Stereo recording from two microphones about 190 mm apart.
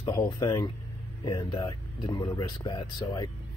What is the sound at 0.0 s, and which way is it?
Speech, 20° left (ahead or behind).